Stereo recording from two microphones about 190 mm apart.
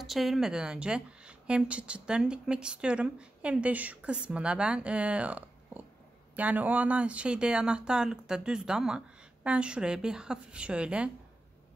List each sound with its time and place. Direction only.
0.0 s a woman's voice: centre (ahead or behind)